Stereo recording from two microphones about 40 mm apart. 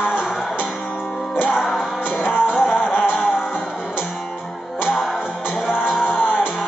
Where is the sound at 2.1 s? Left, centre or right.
Left.